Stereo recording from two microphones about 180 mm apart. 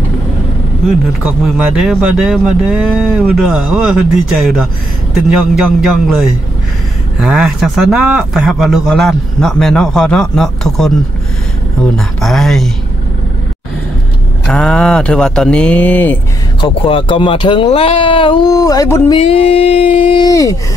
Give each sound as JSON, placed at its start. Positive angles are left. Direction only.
{"t": 0.8, "sound": "speech", "side_deg": 0}
{"t": 14.5, "sound": "speech", "side_deg": 5}
{"t": 16.6, "sound": "speech", "side_deg": 30}
{"t": 19.1, "sound": "speech", "side_deg": 30}